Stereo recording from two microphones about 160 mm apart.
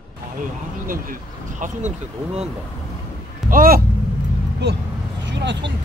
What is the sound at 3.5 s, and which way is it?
Speech, 65° right (ahead or behind).